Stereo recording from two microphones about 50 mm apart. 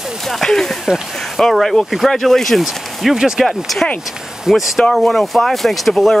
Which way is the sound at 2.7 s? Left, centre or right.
Centre.